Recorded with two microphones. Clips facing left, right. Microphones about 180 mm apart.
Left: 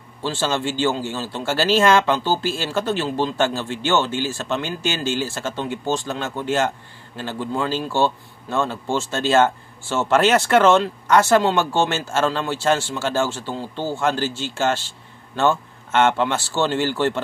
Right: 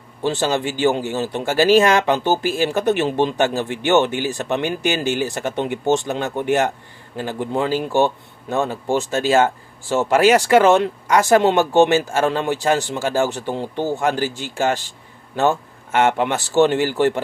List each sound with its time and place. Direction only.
0.2 s speech: 15° right (ahead or behind)